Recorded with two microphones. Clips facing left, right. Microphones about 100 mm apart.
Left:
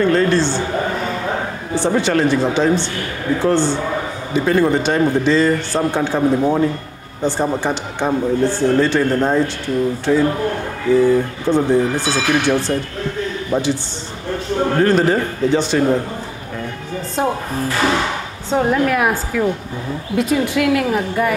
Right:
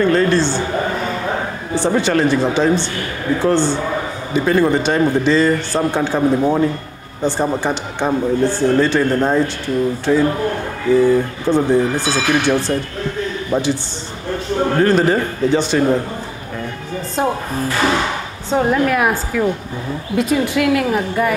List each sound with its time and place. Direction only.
0.0 s a man's voice: 25° right (ahead or behind)
17.1 s speech: 30° right (ahead or behind)